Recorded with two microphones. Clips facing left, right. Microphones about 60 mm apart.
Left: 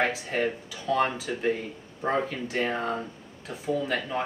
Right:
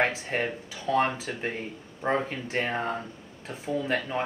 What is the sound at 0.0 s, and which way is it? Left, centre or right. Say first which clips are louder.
Speech: even; right.